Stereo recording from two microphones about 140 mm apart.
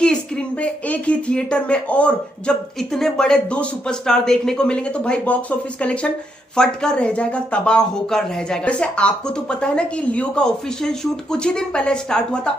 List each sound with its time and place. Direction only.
0.0 s speech: 10° left (ahead or behind)